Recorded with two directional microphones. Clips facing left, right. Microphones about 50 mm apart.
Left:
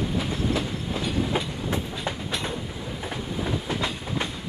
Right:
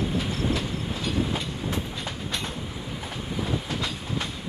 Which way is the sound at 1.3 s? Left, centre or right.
Left.